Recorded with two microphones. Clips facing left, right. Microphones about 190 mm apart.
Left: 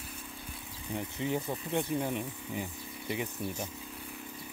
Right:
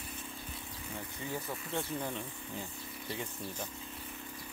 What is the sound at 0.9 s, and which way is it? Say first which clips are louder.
Speech: left 8 dB; 20° left (ahead or behind).